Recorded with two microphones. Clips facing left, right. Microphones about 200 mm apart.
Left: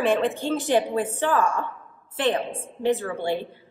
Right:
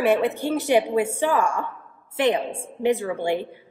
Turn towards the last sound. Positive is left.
turn(degrees=-15)  # may be behind; listen again after turning